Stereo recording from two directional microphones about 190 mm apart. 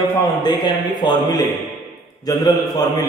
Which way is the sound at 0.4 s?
25° left (ahead or behind).